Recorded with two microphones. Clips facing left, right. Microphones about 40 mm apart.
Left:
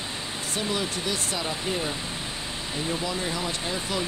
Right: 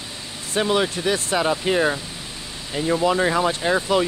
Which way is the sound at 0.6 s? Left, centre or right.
Right.